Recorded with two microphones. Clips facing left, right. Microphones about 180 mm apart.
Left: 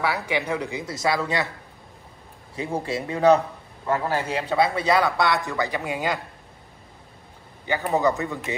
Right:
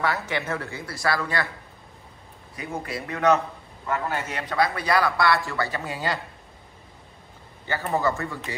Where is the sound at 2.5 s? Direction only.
25° left (ahead or behind).